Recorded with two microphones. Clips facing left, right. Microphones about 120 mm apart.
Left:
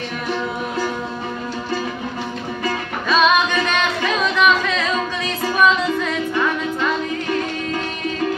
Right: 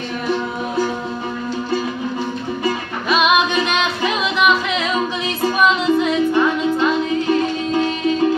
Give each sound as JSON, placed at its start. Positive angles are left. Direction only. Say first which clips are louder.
{"t": 2.6, "sound": "music", "louder": "right 1 dB", "side_deg": -15}